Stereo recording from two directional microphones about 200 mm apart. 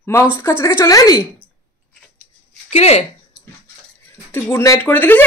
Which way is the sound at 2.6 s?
30° left (ahead or behind).